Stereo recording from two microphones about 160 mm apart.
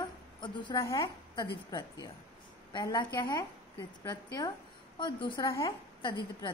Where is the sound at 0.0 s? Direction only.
30° left (ahead or behind).